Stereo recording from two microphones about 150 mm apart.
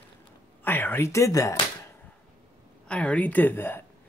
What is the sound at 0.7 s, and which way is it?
Speech, 15° left (ahead or behind).